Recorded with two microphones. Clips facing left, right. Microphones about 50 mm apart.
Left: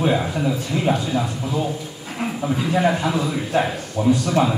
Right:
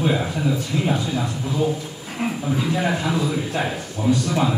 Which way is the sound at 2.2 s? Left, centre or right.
Centre.